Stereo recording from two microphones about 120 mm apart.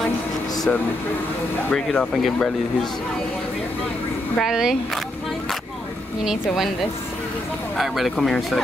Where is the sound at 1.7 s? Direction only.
5° left (ahead or behind).